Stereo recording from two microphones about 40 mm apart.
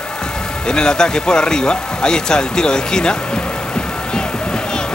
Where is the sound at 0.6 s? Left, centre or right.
Centre.